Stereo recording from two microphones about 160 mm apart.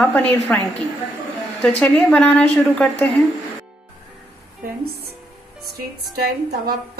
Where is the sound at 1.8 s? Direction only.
5° left (ahead or behind).